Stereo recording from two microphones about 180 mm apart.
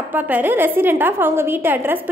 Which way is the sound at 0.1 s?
10° right (ahead or behind).